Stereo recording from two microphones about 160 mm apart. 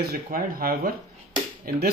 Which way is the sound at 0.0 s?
70° right (ahead or behind).